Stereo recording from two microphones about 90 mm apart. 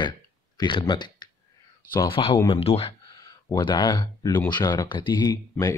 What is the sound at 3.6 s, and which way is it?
Speech, 55° left (ahead or behind).